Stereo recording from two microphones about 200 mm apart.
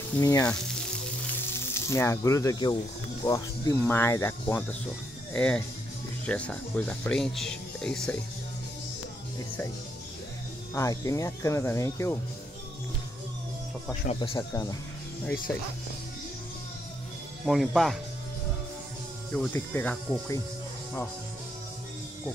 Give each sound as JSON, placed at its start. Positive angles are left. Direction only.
{"t": 0.2, "sound": "speech", "side_deg": 15}
{"t": 1.7, "sound": "speech", "side_deg": 15}
{"t": 10.7, "sound": "speech", "side_deg": 15}
{"t": 14.0, "sound": "speech", "side_deg": 25}
{"t": 17.5, "sound": "speech", "side_deg": 0}
{"t": 19.3, "sound": "speech", "side_deg": 10}